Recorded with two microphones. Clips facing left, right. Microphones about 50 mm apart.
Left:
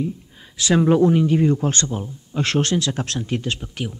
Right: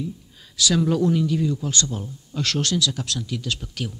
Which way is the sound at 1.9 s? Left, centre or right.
Left.